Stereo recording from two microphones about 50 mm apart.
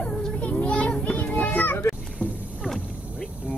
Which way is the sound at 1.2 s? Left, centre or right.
Left.